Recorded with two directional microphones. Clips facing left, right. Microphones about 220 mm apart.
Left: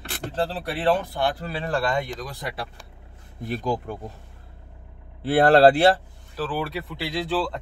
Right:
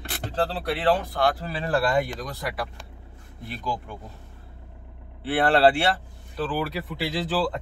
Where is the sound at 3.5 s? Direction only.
45° left (ahead or behind).